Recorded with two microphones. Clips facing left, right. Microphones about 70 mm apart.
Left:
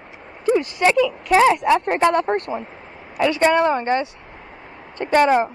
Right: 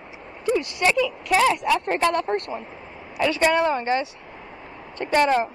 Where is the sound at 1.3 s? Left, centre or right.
Left.